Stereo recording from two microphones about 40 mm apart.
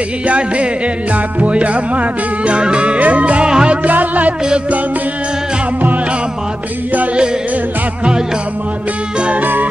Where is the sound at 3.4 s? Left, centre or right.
Right.